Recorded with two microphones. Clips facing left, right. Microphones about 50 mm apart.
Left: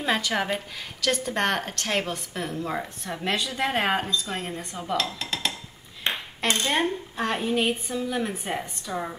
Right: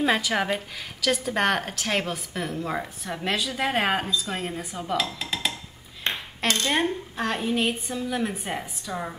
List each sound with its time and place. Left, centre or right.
0.0 s a woman's voice: centre
6.0 s ping: centre
6.7 s a woman's voice: centre